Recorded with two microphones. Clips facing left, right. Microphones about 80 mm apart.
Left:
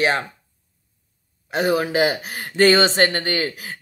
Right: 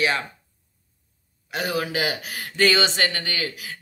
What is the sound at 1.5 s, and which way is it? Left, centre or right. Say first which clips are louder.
Speech: left 7 dB; left.